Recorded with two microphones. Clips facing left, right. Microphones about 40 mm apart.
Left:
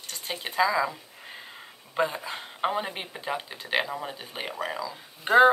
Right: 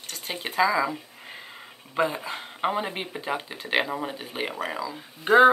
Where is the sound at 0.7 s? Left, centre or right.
Centre.